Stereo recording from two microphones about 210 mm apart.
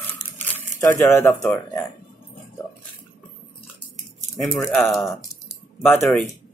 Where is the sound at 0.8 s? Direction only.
10° left (ahead or behind).